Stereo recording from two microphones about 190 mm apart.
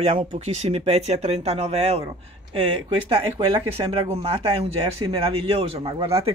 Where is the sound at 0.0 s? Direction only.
35° right (ahead or behind).